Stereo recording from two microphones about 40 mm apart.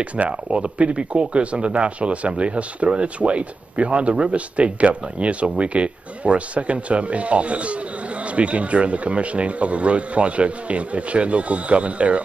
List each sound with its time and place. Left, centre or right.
0.3 s speech: right